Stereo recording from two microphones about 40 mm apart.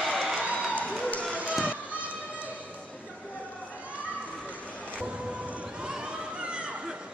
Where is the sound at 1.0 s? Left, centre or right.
Left.